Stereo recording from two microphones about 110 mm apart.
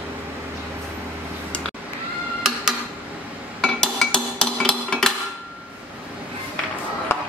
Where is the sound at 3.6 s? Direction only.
5° left (ahead or behind).